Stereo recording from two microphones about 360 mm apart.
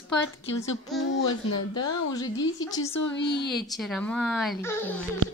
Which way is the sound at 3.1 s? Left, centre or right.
Left.